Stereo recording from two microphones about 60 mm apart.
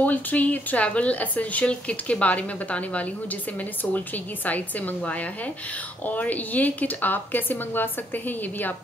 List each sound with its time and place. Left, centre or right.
0.0 s a woman's voice: left